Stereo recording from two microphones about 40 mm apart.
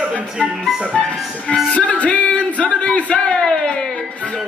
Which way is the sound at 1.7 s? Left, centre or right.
Left.